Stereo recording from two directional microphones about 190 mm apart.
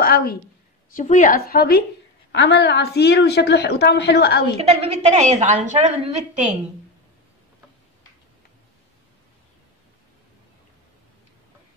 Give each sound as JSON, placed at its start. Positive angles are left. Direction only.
{"t": 0.0, "sound": "a sound", "side_deg": 50}
{"t": 0.9, "sound": "a woman's voice", "side_deg": 40}
{"t": 2.3, "sound": "a woman's voice", "side_deg": 65}
{"t": 4.6, "sound": "a woman's voice", "side_deg": -35}